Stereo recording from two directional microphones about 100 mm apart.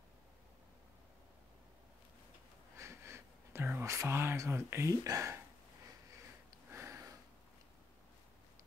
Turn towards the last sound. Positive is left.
turn(degrees=-30)  # may be behind; listen again after turning